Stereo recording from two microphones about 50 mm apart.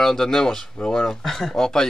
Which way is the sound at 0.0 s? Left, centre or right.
Centre.